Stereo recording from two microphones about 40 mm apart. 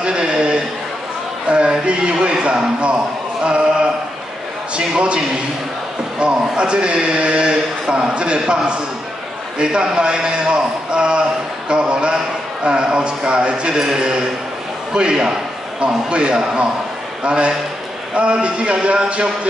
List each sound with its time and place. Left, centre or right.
0.0 s a sound: right
1.5 s speech: right
3.4 s a sound: right
4.7 s a man's voice: right
9.6 s a man's voice: right
13.7 s a man's voice: centre